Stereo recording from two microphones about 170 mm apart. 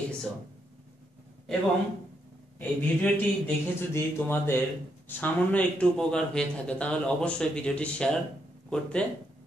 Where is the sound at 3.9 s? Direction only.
15° left (ahead or behind).